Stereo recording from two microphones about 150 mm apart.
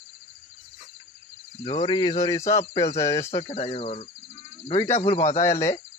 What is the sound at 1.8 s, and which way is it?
Speech, 30° left (ahead or behind).